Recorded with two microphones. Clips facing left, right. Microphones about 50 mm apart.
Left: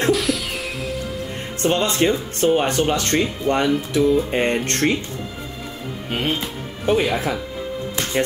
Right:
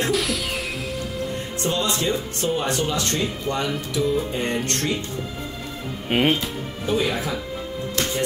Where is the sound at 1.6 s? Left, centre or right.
Left.